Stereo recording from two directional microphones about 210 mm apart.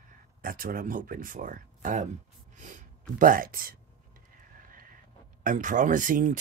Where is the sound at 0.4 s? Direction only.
45° right (ahead or behind).